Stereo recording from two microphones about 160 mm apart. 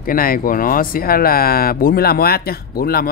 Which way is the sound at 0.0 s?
65° left (ahead or behind).